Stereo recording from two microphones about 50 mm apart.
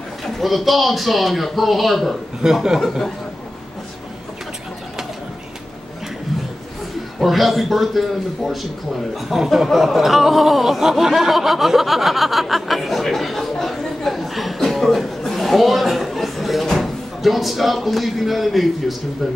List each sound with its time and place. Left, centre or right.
0.2 s speech: centre
7.2 s speech: centre